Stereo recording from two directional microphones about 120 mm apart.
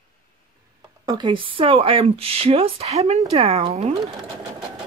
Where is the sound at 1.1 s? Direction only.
40° right (ahead or behind); by 4.0 s 60° right (ahead or behind).